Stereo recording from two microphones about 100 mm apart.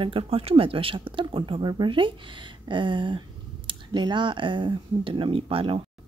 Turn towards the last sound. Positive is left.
turn(degrees=-70)  # may be behind; listen again after turning